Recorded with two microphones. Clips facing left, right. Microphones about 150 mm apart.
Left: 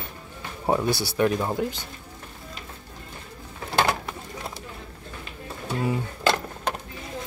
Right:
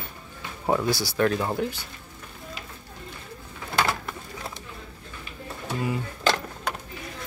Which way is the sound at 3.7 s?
25° left (ahead or behind).